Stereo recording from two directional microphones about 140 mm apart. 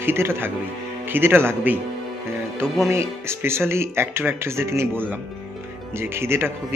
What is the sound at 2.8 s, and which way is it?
Speech, 20° right (ahead or behind).